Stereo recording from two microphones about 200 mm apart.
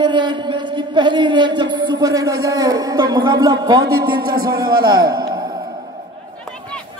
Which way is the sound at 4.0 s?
50° right (ahead or behind).